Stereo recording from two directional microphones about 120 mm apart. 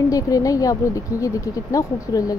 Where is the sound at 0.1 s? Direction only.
30° left (ahead or behind).